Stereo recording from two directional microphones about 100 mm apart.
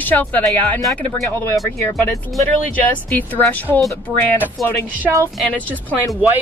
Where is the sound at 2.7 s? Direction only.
15° left (ahead or behind).